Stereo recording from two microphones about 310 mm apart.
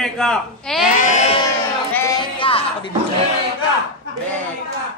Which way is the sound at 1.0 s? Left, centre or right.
Left.